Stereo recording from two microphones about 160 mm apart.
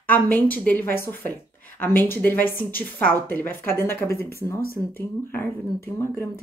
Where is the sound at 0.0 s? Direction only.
10° left (ahead or behind).